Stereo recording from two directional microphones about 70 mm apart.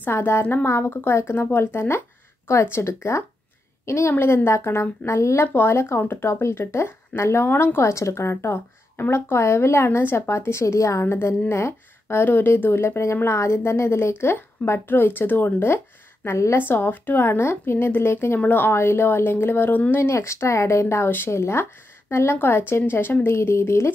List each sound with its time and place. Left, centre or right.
0.0 s a woman's voice: left
4.1 s speech: left
16.6 s speech: left